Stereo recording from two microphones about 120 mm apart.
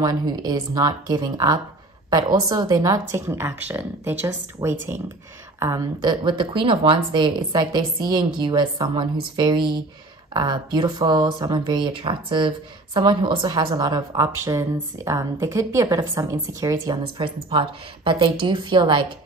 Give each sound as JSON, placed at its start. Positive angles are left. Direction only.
{"t": 0.0, "sound": "a woman's voice", "side_deg": -35}
{"t": 5.9, "sound": "a woman's voice", "side_deg": -40}
{"t": 17.0, "sound": "a woman's voice", "side_deg": -45}